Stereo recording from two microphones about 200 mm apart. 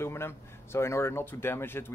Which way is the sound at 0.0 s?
10° left (ahead or behind).